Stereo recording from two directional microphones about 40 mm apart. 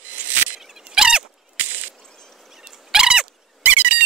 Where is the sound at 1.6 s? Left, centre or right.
Right.